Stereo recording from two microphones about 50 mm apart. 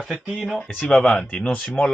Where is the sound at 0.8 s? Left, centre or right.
Centre.